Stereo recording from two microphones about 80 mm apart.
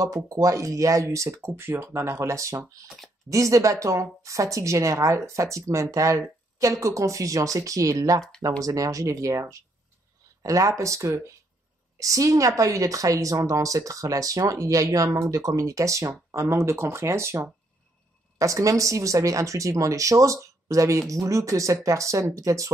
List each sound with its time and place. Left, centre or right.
0.0 s speech: right